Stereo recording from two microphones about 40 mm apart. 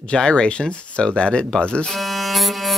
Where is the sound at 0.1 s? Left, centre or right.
Left.